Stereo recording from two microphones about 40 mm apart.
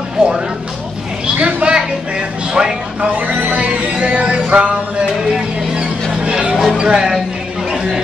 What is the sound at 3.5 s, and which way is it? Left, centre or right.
Music, right.